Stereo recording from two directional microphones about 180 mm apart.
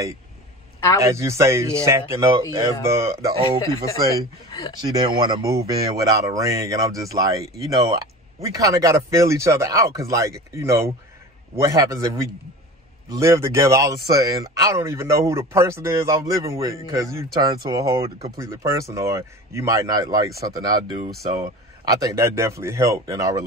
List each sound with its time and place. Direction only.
1.0 s speech: 15° right (ahead or behind)